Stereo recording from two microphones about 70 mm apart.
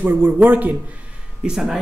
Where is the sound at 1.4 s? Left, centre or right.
Centre.